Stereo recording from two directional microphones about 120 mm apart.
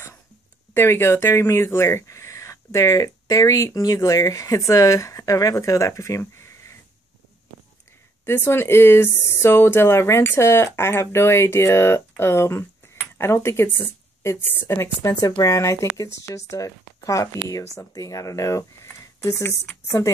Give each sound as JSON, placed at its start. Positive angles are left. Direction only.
{"t": 0.7, "sound": "speech", "side_deg": 20}
{"t": 8.3, "sound": "speech", "side_deg": 20}